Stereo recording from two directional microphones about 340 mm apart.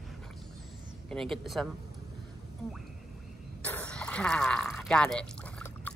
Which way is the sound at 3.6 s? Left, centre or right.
Centre.